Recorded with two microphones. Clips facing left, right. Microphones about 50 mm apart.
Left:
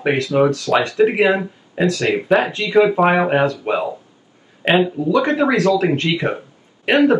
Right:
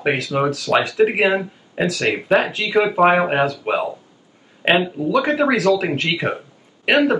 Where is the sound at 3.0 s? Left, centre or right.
Centre.